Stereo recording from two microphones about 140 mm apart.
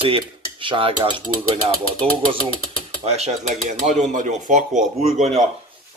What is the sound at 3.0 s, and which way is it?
A man's voice, 50° right (ahead or behind).